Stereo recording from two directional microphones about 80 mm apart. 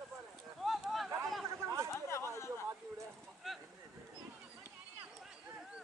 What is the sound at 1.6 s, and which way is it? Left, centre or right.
Chatter, right.